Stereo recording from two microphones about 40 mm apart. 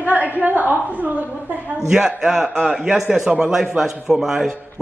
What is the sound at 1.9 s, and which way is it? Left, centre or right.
A man's voice, centre.